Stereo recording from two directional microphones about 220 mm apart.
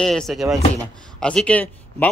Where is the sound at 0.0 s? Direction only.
Centre (ahead or behind).